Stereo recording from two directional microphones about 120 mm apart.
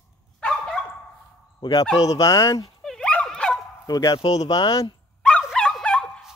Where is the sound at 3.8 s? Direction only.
35° left (ahead or behind).